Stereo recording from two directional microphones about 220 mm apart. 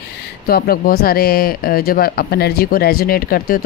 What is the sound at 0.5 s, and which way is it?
Speech, 45° left (ahead or behind).